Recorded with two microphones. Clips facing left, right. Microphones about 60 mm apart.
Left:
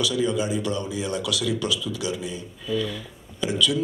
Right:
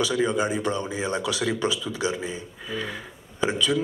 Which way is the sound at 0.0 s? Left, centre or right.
Right.